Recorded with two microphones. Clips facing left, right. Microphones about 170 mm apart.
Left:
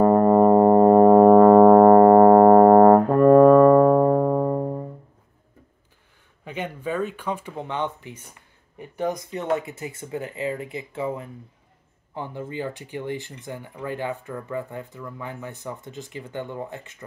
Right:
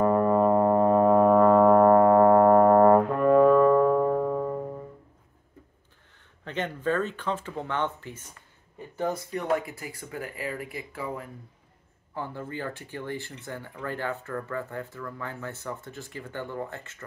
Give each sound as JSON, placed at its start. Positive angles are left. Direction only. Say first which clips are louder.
{"t": 0.0, "sound": "music", "louder": "left 6 dB", "side_deg": 40}
{"t": 6.4, "sound": "speech", "louder": "right 1 dB", "side_deg": 10}